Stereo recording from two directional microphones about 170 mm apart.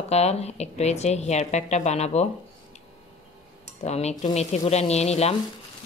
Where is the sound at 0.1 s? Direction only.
40° left (ahead or behind).